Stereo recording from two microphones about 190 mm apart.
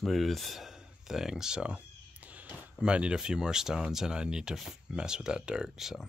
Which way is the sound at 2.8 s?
5° right (ahead or behind).